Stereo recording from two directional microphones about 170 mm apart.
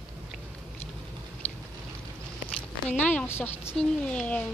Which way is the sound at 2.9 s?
5° left (ahead or behind).